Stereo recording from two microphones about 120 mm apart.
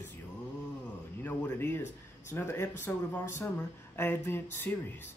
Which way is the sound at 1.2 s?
15° left (ahead or behind).